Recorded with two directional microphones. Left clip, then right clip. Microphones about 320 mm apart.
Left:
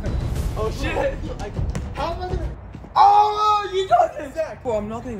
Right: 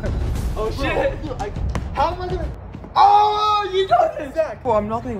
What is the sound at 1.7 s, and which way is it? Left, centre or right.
Music, centre.